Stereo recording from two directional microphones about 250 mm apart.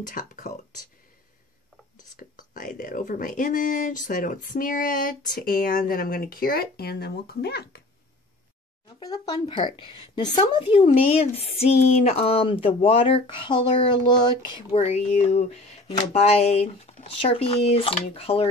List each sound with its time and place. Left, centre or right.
0.0 s speech: left
2.1 s speech: left
9.0 s speech: centre